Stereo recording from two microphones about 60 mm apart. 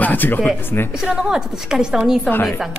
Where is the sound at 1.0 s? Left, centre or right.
Centre.